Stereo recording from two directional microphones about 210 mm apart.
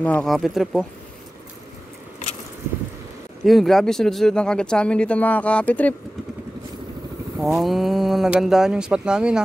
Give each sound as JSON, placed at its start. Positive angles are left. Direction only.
{"t": 0.0, "sound": "speech", "side_deg": 5}
{"t": 3.4, "sound": "speech", "side_deg": 0}
{"t": 7.3, "sound": "speech", "side_deg": 0}